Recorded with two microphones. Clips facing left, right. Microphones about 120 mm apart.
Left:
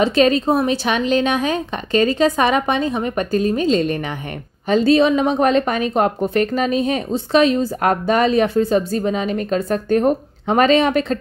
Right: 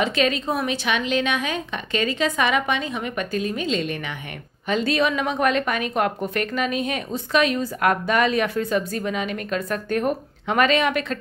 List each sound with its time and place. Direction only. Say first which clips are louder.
0.0 s a woman's voice: left 7 dB; 35° left (ahead or behind)